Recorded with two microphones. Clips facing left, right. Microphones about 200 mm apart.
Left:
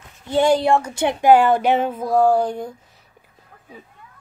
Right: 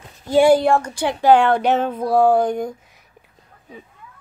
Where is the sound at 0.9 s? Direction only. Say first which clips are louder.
Left 1 dB; 20° left (ahead or behind).